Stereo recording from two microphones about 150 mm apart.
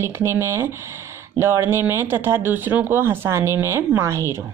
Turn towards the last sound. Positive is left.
turn(degrees=-20)  # may be behind; listen again after turning